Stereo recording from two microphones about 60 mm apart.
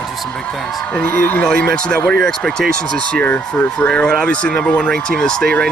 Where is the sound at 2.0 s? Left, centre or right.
Centre.